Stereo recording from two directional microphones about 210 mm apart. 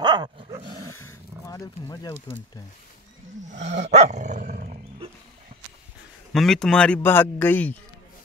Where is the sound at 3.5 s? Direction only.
60° right (ahead or behind).